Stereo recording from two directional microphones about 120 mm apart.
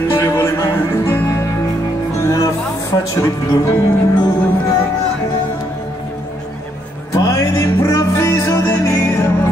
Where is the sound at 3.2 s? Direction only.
25° left (ahead or behind).